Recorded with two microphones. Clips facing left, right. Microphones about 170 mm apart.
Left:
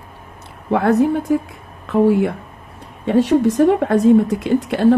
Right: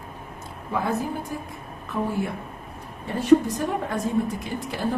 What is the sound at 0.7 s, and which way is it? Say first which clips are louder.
A woman's voice: left 12 dB; 70° left (ahead or behind).